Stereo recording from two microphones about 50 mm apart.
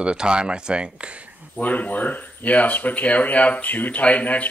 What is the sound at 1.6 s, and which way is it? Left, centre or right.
Speech, left.